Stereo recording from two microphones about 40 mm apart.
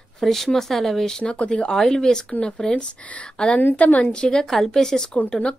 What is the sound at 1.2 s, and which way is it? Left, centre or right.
Speech, left.